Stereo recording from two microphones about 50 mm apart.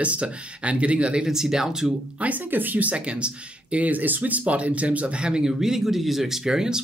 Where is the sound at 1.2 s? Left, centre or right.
Centre.